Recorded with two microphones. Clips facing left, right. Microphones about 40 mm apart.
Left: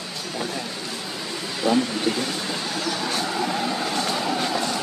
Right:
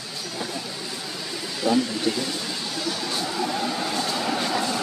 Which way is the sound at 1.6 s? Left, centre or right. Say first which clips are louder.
Left 1 dB; left.